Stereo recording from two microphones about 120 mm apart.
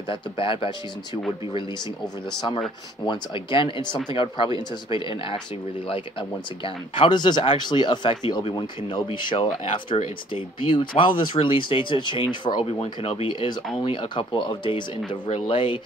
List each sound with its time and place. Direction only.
0.1 s speech: 45° left (ahead or behind)
3.1 s speech: 45° left (ahead or behind)
6.6 s speech: 45° left (ahead or behind)
12.8 s speech: 55° left (ahead or behind)